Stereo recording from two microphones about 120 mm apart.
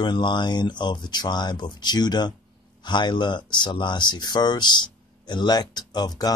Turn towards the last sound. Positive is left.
turn(degrees=35)  # may be behind; listen again after turning